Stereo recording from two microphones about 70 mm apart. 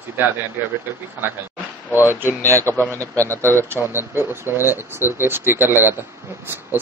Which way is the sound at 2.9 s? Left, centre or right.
Right.